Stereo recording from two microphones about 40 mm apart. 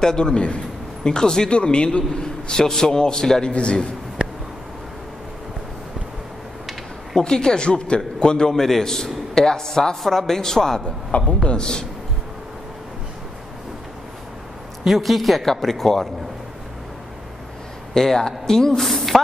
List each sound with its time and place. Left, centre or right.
0.0 s a man's voice: centre
7.2 s a man's voice: centre
8.5 s a man's voice: centre
11.1 s a man's voice: left
11.4 s a man's voice: centre
14.9 s speech: centre
17.9 s a man's voice: centre
18.8 s a woman's voice: centre